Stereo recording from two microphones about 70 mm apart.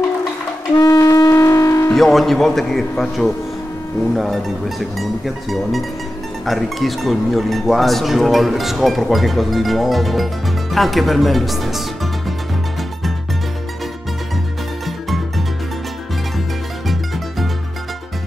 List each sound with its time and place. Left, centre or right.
0.7 s music: left
1.9 s speech: centre
15.0 s music: centre
16.8 s music: centre